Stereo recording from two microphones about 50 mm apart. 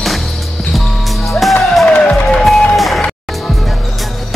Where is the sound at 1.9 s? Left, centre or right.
Left.